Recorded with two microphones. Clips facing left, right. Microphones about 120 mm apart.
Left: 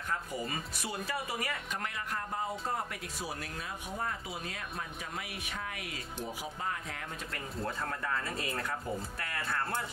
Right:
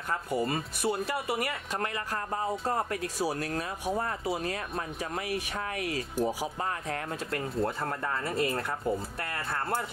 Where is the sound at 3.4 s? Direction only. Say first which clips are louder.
Right 8 dB; 45° right (ahead or behind).